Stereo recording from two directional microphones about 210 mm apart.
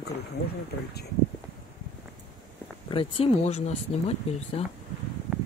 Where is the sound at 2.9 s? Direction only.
25° left (ahead or behind).